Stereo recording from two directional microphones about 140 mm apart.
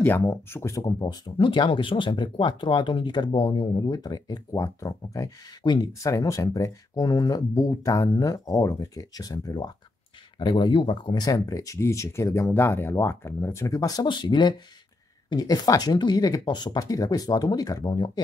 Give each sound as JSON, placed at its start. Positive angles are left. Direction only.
{"t": 0.0, "sound": "speech", "side_deg": 20}